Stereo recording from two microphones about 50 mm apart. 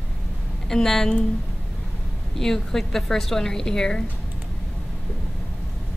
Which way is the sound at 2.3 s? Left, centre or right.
Centre.